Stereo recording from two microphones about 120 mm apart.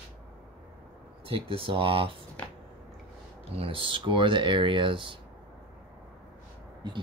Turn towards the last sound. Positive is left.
turn(degrees=-45)  # may be behind; listen again after turning